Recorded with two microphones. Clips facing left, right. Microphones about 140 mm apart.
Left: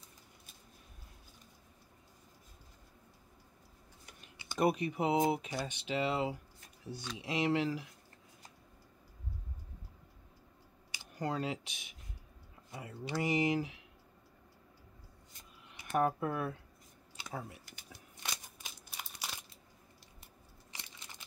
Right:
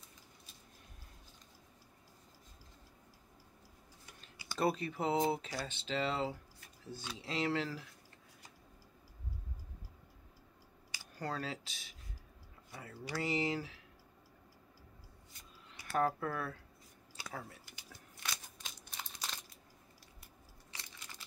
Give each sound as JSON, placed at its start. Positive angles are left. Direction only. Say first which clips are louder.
{"t": 4.0, "sound": "speech", "louder": "left 1 dB", "side_deg": 20}
{"t": 10.9, "sound": "speech", "louder": "left 4 dB", "side_deg": 20}
{"t": 15.7, "sound": "speech", "louder": "left 2 dB", "side_deg": 20}
{"t": 18.6, "sound": "a sound", "louder": "even", "side_deg": 10}